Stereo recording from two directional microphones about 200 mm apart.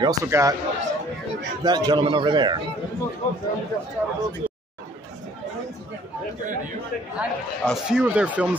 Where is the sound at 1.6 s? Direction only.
20° right (ahead or behind).